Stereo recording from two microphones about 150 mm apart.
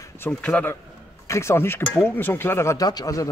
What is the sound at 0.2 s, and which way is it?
Speech, 10° left (ahead or behind).